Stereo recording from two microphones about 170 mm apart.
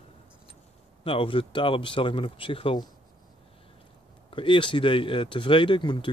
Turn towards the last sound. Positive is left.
turn(degrees=30)  # may be behind; listen again after turning